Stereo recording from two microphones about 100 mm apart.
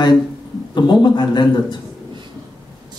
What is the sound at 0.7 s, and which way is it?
A man's voice, 50° left (ahead or behind).